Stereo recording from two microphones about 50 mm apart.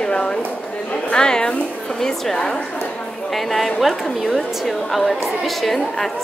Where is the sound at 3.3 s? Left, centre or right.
Centre.